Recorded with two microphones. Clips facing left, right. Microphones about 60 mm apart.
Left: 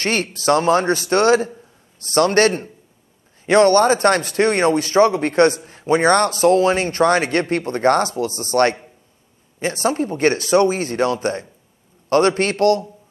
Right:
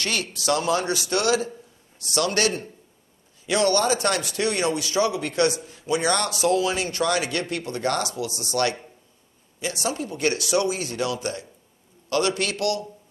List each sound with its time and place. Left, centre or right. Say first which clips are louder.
0.0 s speech: left 7 dB; left